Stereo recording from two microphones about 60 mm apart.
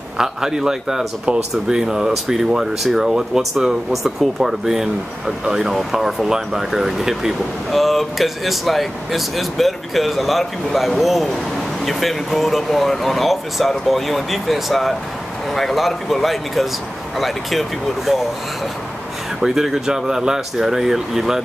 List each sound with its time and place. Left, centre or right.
0.2 s speech: centre
19.4 s speech: centre